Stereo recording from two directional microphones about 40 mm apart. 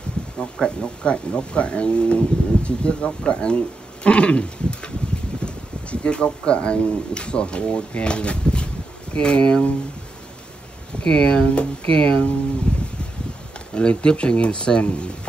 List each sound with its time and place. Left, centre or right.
0.4 s speech: left
11.1 s speech: left
12.7 s a sound: left
13.7 s speech: left